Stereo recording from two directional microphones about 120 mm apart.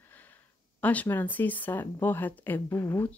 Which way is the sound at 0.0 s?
15° left (ahead or behind).